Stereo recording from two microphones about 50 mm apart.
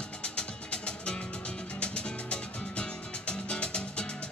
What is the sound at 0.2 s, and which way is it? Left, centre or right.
Music, left.